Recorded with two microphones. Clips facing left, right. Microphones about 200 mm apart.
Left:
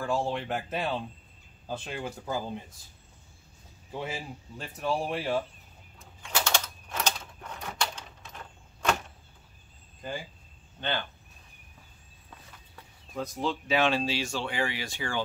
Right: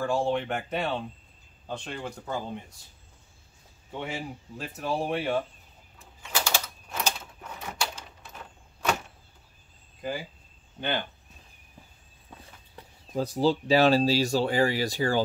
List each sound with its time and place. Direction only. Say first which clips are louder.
0.0 s speech: right 3 dB; centre (ahead or behind)
4.0 s speech: right 2 dB; centre (ahead or behind)
5.9 s typewriter: even; 5° right (ahead or behind)
10.8 s speech: right 2 dB; 15° right (ahead or behind)
12.7 s speech: right 6 dB; 30° right (ahead or behind)